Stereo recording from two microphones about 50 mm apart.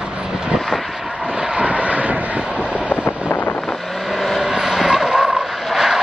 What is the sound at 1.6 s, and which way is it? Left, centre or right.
Vehicle, right.